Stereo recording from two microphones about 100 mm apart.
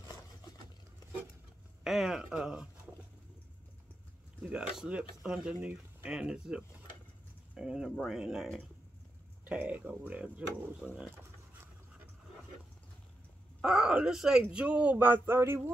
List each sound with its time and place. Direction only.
1.9 s speech: 5° right (ahead or behind)
4.4 s speech: 10° right (ahead or behind)
9.4 s speech: 15° right (ahead or behind)
13.6 s speech: 5° right (ahead or behind); by 15.7 s 25° right (ahead or behind)